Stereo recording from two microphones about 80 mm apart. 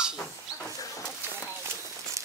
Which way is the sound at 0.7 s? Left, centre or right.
Left.